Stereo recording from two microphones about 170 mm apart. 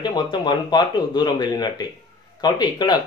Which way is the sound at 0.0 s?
25° left (ahead or behind).